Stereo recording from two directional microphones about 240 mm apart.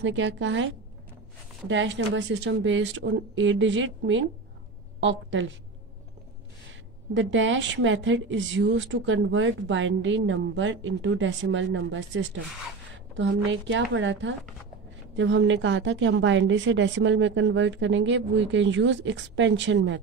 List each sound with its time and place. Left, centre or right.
0.0 s a woman's voice: right
1.7 s a woman's voice: right
6.7 s a woman's voice: right